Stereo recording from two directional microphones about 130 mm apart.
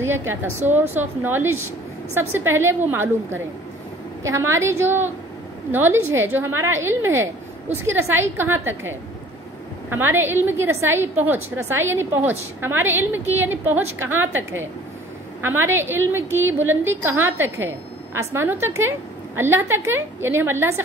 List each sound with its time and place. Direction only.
0.0 s a woman's voice: 20° right (ahead or behind)